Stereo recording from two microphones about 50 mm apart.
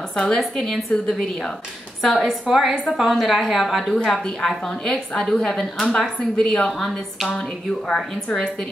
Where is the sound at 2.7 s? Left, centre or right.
Centre.